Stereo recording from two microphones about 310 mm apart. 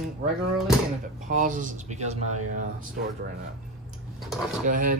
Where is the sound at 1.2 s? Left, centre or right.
Right.